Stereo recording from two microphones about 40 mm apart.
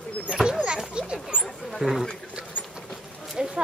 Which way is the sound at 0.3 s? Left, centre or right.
Centre.